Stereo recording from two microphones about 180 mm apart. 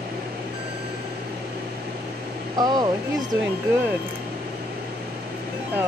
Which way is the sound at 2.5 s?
25° right (ahead or behind).